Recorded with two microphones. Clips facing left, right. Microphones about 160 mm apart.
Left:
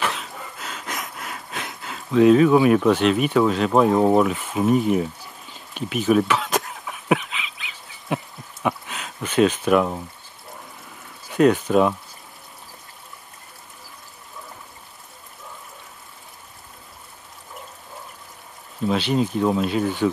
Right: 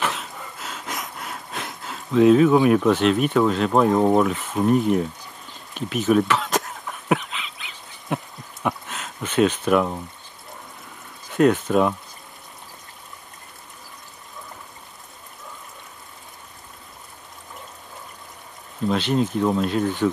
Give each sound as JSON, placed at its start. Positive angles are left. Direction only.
{"t": 0.0, "sound": "a sound", "side_deg": 0}
{"t": 8.6, "sound": "speech", "side_deg": 0}
{"t": 11.3, "sound": "speech", "side_deg": 0}
{"t": 18.9, "sound": "speech", "side_deg": 5}